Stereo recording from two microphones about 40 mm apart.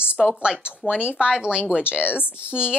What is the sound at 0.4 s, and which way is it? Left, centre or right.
A woman's voice, right.